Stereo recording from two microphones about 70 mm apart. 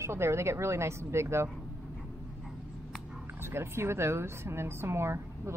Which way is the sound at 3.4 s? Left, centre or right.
Right.